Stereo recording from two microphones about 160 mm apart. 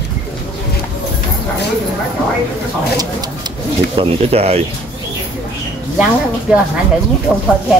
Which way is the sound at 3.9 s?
40° right (ahead or behind).